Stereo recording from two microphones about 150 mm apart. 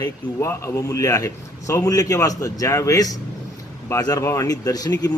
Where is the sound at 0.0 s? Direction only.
20° left (ahead or behind).